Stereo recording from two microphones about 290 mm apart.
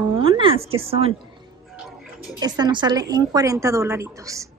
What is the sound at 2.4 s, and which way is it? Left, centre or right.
A woman's voice, centre.